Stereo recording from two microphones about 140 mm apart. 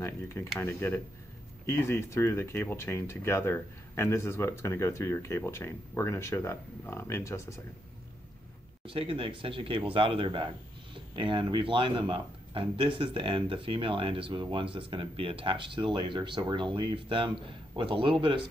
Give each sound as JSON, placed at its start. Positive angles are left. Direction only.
{"t": 0.0, "sound": "speech", "side_deg": 20}
{"t": 8.8, "sound": "speech", "side_deg": -40}